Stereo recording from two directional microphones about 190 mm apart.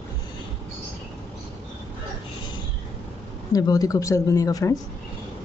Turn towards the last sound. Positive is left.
turn(degrees=20)  # may be behind; listen again after turning